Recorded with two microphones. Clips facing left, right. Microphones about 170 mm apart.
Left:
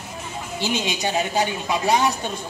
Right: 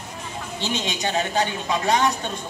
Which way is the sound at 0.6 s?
10° left (ahead or behind).